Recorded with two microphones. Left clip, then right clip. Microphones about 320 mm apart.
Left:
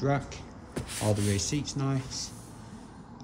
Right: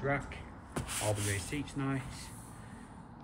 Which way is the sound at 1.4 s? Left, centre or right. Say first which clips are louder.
Left 6 dB; left.